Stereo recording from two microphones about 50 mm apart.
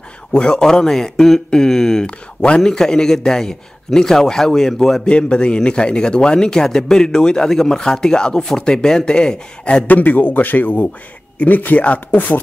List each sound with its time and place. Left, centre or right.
0.3 s a man's voice: centre
5.0 s a man's voice: centre
9.8 s speech: left